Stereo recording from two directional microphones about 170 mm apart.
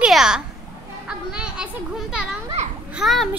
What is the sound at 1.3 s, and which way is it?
A child's voice, 5° right (ahead or behind).